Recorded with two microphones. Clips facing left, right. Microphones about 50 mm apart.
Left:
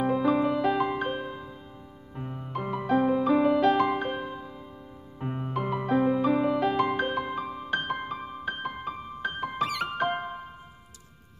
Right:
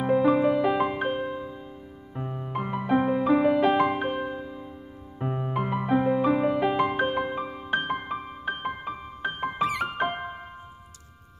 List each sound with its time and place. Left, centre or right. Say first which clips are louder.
0.0 s music: right 3 dB; centre